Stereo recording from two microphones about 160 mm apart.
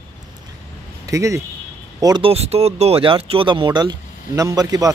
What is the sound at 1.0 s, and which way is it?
Speech, 20° right (ahead or behind).